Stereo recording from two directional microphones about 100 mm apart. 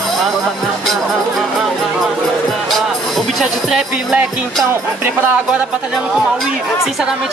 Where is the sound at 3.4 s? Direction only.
5° right (ahead or behind).